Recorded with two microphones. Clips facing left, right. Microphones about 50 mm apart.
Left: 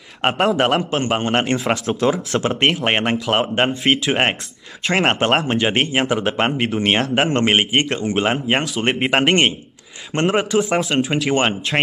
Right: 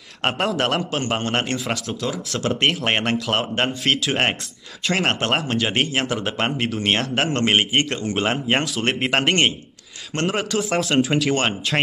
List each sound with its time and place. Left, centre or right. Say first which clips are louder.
0.2 s speech: left 5 dB; centre
1.9 s speech: left 8 dB; left
2.7 s speech: left 3 dB; centre
7.8 s speech: left 3 dB; left
8.2 s speech: left 1 dB; centre